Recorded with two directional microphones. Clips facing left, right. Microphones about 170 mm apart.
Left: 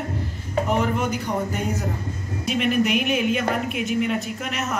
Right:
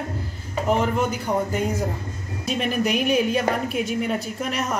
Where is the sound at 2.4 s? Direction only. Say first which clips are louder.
Left 2 dB; 35° right (ahead or behind).